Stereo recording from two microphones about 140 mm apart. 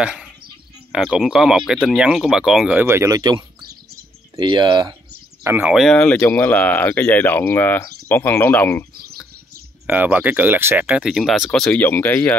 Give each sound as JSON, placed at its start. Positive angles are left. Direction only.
{"t": 0.0, "sound": "speech", "side_deg": -5}
{"t": 3.2, "sound": "speech", "side_deg": -30}
{"t": 5.4, "sound": "speech", "side_deg": -15}
{"t": 5.7, "sound": "speech", "side_deg": 0}
{"t": 9.8, "sound": "speech", "side_deg": -10}